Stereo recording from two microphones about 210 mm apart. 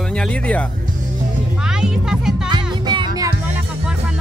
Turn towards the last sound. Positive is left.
turn(degrees=-20)  # may be behind; listen again after turning